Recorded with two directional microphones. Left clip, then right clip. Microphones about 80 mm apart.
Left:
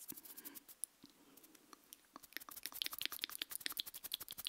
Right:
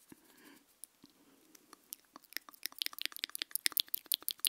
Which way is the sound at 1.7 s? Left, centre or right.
Centre.